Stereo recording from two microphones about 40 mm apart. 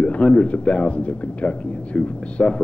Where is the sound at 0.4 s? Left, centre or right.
Left.